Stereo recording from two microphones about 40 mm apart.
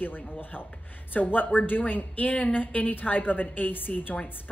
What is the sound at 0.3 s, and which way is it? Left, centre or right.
Speech, left.